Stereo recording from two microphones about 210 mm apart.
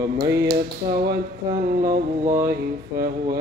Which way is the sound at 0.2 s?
50° right (ahead or behind).